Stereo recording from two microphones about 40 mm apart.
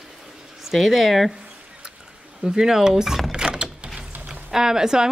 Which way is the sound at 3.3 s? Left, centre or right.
Right.